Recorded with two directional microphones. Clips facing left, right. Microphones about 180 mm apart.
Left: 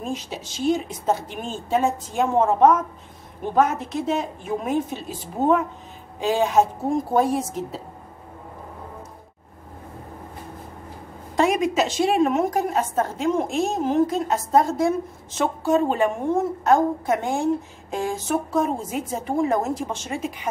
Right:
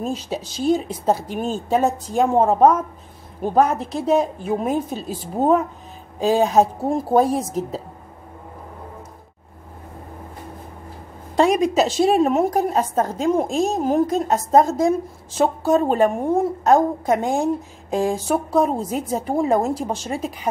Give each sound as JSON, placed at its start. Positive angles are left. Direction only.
{"t": 0.0, "sound": "a woman's voice", "side_deg": -35}
{"t": 11.3, "sound": "a woman's voice", "side_deg": -35}